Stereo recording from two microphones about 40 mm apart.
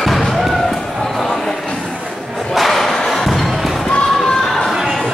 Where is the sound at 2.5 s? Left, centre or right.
Centre.